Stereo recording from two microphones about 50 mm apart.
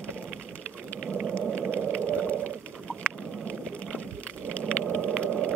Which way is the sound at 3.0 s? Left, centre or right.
Centre.